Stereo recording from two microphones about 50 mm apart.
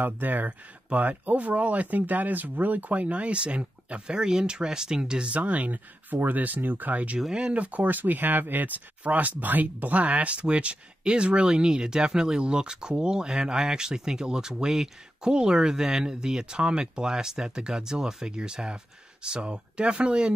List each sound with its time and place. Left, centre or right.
0.0 s speech: right
7.2 s speech: centre